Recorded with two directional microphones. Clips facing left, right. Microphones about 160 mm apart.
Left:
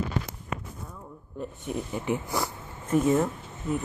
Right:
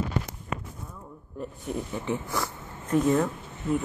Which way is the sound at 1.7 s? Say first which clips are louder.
Left 1 dB; 10° left (ahead or behind).